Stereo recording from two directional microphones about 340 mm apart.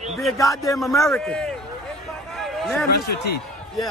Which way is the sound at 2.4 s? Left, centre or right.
Centre.